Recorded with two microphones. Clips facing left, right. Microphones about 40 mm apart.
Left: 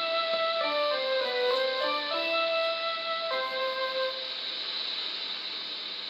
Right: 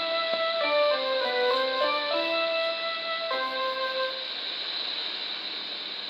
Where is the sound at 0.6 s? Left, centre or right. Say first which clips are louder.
Right 4 dB; right.